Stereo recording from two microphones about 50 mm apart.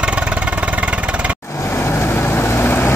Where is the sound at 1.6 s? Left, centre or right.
Left.